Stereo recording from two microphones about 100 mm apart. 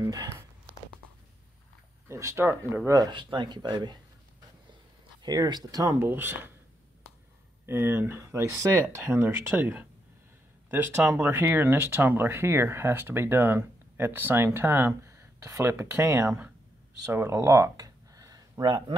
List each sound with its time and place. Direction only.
0.0 s speech: 40° right (ahead or behind)
2.0 s speech: 30° right (ahead or behind)
2.9 s speech: 40° right (ahead or behind)
3.2 s speech: 50° right (ahead or behind)
5.2 s speech: 45° right (ahead or behind)
5.9 s speech: 20° right (ahead or behind)
7.6 s speech: 25° right (ahead or behind)
17.1 s a sound: 25° right (ahead or behind)
18.7 s speech: 50° right (ahead or behind)